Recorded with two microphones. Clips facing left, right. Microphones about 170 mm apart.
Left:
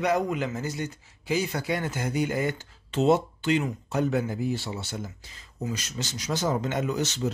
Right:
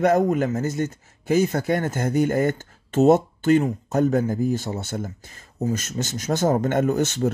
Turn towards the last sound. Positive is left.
turn(degrees=-50)  # may be behind; listen again after turning